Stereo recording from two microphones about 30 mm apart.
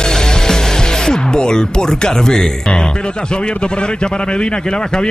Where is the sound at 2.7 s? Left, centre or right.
Left.